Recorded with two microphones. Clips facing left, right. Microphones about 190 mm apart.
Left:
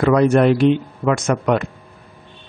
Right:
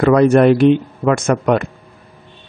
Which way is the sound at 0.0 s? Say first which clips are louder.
Right 3 dB; 50° right (ahead or behind).